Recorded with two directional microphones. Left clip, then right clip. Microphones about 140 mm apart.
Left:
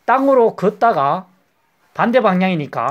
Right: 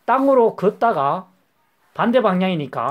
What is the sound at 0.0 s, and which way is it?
Speech, 15° right (ahead or behind).